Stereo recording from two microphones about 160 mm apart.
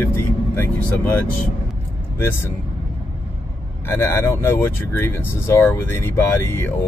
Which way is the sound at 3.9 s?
15° left (ahead or behind).